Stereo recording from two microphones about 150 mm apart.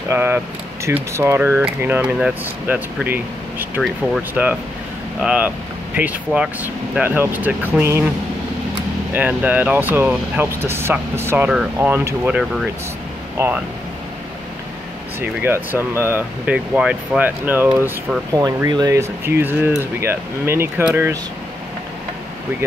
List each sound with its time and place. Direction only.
0.1 s speech: 15° right (ahead or behind)
9.1 s speech: 10° right (ahead or behind)
12.3 s speech: 5° right (ahead or behind)
13.4 s speech: 20° right (ahead or behind)
15.1 s speech: 15° right (ahead or behind)
18.3 s speech: 25° right (ahead or behind)